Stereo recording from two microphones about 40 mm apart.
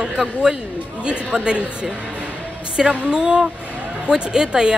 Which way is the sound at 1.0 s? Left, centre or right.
Right.